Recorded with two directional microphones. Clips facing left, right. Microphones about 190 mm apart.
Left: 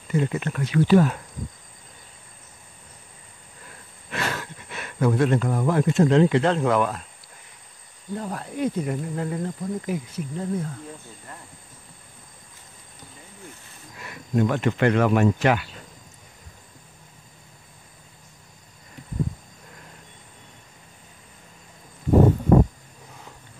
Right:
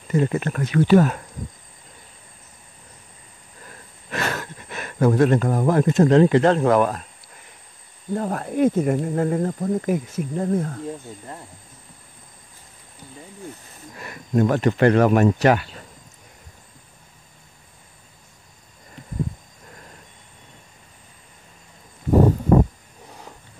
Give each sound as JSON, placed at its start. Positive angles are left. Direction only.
{"t": 0.1, "sound": "speech", "side_deg": -45}
{"t": 4.1, "sound": "speech", "side_deg": -45}
{"t": 8.1, "sound": "speech", "side_deg": -55}
{"t": 13.9, "sound": "speech", "side_deg": -45}